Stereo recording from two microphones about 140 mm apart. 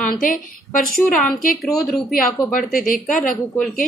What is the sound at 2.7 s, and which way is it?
Speech, 75° left (ahead or behind).